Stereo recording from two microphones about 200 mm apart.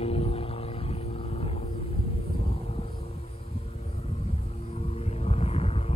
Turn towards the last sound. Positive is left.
turn(degrees=30)  # may be behind; listen again after turning